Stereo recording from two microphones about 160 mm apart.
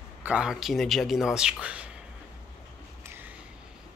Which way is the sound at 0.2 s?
5° right (ahead or behind).